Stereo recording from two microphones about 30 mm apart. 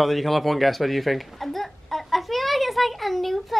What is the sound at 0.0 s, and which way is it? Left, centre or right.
Speech, centre.